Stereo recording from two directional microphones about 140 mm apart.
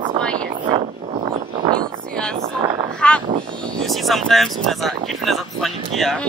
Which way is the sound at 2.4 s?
50° right (ahead or behind).